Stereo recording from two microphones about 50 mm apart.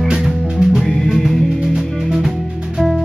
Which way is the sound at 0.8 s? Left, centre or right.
Centre.